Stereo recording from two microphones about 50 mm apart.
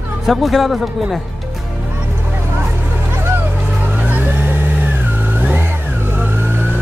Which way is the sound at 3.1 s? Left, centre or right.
Right.